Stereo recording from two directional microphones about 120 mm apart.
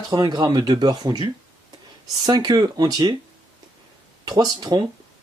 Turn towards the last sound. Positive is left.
turn(degrees=-35)  # may be behind; listen again after turning